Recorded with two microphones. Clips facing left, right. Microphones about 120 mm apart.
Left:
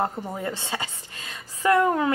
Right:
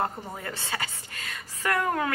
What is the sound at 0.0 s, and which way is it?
A woman's voice, 20° left (ahead or behind).